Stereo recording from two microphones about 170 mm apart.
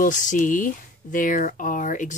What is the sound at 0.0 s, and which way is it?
Speech, 50° left (ahead or behind).